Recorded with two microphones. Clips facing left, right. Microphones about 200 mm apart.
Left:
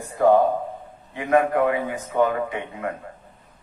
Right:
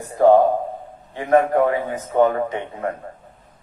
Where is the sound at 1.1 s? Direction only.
35° right (ahead or behind).